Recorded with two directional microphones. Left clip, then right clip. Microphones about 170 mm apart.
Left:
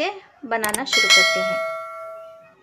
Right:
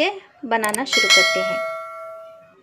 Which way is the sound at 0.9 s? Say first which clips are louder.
Even; centre (ahead or behind).